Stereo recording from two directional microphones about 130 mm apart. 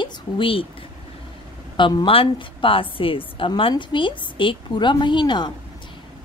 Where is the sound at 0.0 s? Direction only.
40° left (ahead or behind).